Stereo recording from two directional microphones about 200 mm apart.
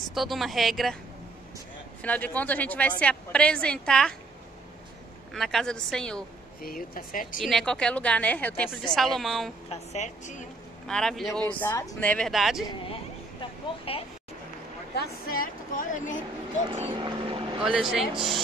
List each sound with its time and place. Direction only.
0.1 s a woman's voice: centre (ahead or behind)
2.0 s a woman's voice: 10° left (ahead or behind)
5.3 s a woman's voice: centre (ahead or behind)
6.6 s a woman's voice: 45° left (ahead or behind)
7.3 s a woman's voice: centre (ahead or behind)
9.7 s a woman's voice: 35° left (ahead or behind)
10.9 s a woman's voice: 5° left (ahead or behind)
12.6 s speech: 25° left (ahead or behind)
15.0 s a woman's voice: 45° left (ahead or behind)
16.7 s speech: 30° right (ahead or behind)
17.6 s a woman's voice: centre (ahead or behind)